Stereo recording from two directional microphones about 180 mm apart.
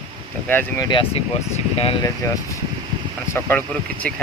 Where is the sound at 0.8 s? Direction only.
25° left (ahead or behind).